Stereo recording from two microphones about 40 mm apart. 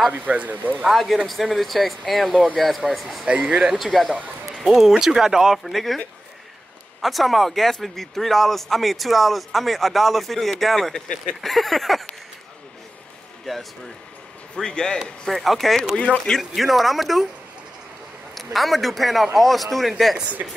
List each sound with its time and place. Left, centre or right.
0.1 s speech: right
1.2 s a man's voice: centre
3.3 s speech: right
3.7 s a man's voice: centre
5.6 s a man's voice: centre
7.0 s a man's voice: centre
10.9 s a man's voice: left
11.4 s a man's voice: centre
14.5 s a man's voice: centre
15.2 s a man's voice: centre
18.3 s a man's voice: centre